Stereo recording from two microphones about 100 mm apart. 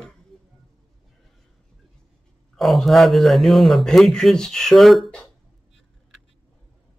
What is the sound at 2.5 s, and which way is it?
A man's voice, centre (ahead or behind).